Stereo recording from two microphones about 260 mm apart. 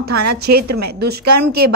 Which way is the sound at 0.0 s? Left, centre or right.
Right.